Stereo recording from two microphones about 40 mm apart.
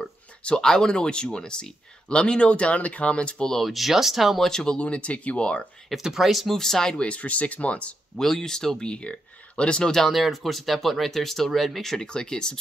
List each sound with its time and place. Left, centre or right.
0.6 s speech: centre
3.6 s speech: centre
4.4 s speech: centre
4.7 s speech: left
6.1 s speech: centre
6.5 s speech: centre
7.0 s speech: left
8.2 s speech: centre
10.1 s speech: centre
12.1 s speech: centre